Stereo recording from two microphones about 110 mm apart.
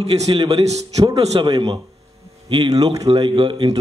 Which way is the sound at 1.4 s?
45° right (ahead or behind).